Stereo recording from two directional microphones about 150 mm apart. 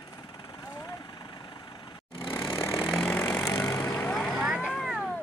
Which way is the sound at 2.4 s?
20° left (ahead or behind).